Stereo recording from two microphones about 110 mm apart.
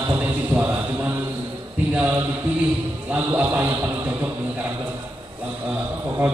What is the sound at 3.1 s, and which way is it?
A man's voice, 15° right (ahead or behind).